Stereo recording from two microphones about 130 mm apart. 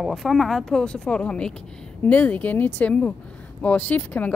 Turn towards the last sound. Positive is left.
turn(degrees=15)  # may be behind; listen again after turning